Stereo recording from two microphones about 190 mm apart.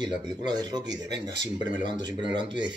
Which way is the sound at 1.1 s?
65° right (ahead or behind).